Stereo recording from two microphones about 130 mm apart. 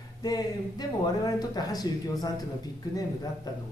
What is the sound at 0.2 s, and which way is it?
Speech, 30° left (ahead or behind).